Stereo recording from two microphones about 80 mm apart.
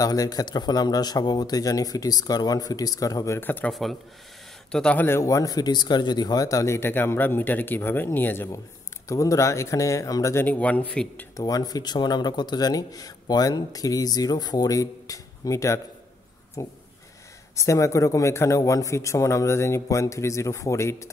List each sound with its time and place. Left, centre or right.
0.0 s speech: left
3.3 s a man's voice: left
4.6 s speech: centre
4.9 s a man's voice: left
5.2 s a man's voice: left
9.1 s a man's voice: left
10.3 s a man's voice: left
11.3 s a man's voice: left